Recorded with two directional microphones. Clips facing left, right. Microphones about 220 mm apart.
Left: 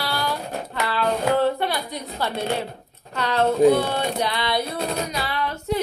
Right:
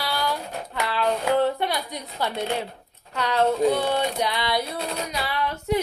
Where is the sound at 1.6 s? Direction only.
15° right (ahead or behind).